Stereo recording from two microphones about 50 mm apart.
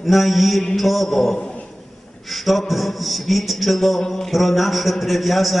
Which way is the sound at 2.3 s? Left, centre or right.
Centre.